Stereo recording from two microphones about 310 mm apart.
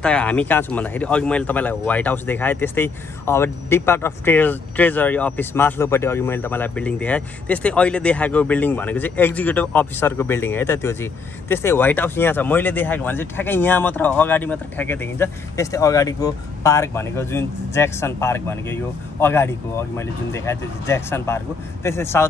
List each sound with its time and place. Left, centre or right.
0.0 s speech: centre